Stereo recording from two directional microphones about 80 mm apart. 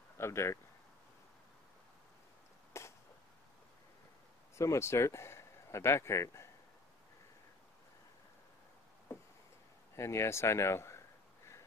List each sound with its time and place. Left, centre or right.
0.2 s speech: left
2.8 s a sound: left
4.6 s speech: left
9.9 s speech: left